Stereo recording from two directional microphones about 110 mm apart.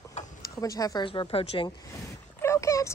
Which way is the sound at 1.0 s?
50° left (ahead or behind).